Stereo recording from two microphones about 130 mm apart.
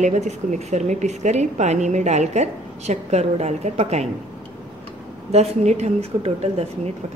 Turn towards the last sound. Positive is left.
turn(degrees=-55)  # may be behind; listen again after turning